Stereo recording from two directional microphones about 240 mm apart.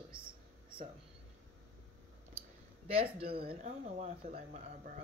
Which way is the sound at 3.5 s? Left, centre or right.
Right.